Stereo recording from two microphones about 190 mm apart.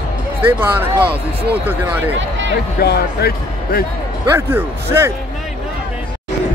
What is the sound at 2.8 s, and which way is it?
Speech, 55° left (ahead or behind).